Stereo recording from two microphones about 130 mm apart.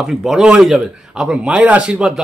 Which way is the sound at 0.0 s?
Centre (ahead or behind).